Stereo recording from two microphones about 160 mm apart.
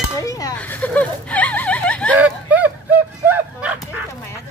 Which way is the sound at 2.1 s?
10° right (ahead or behind).